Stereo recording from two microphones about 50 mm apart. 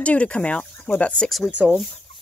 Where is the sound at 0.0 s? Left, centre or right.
Left.